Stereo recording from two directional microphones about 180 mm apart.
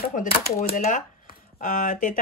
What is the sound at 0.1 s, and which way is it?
Speech, 45° left (ahead or behind).